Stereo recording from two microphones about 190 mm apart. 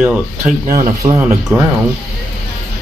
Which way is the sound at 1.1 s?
15° right (ahead or behind).